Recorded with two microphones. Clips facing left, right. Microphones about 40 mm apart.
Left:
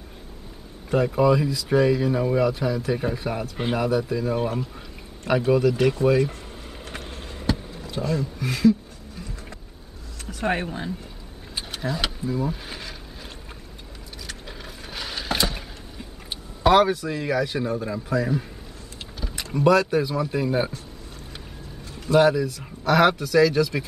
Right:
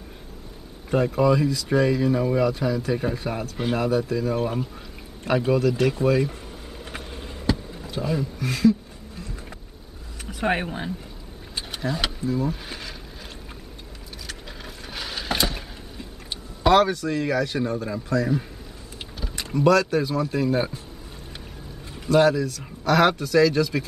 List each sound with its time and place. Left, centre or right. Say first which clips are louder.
0.8 s speech: left 1 dB; centre
5.5 s speech: left 2 dB; centre
6.9 s a sound: even; centre
8.0 s speech: even; centre
8.4 s speech: left 1 dB; centre
10.2 s speech: right 1 dB; centre
11.5 s vehicle: even; centre
12.4 s speech: right 1 dB; centre
14.2 s vehicle: even; centre
16.6 s speech: even; centre
19.1 s vehicle: even; centre
19.5 s speech: even; centre
22.1 s speech: even; centre